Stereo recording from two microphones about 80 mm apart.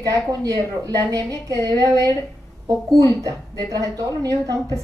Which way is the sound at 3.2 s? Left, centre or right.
Right.